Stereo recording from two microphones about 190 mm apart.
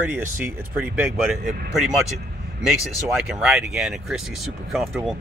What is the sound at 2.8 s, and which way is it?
Speech, centre (ahead or behind).